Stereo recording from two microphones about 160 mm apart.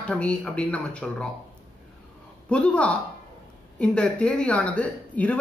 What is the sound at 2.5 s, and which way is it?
A woman's voice, 10° left (ahead or behind).